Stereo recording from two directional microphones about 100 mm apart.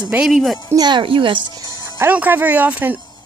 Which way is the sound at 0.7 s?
45° right (ahead or behind).